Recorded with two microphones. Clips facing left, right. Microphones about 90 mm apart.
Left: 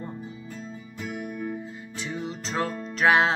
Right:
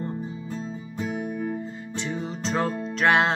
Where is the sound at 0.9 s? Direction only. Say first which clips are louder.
Right 4 dB; 35° right (ahead or behind).